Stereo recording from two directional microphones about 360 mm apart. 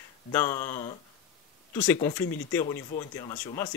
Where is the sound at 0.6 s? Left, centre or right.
Centre.